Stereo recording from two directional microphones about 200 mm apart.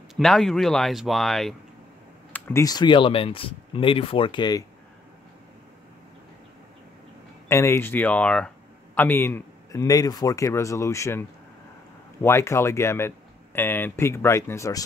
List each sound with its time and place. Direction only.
0.1 s speech: centre (ahead or behind)
2.3 s speech: 10° left (ahead or behind)
7.4 s speech: 15° left (ahead or behind)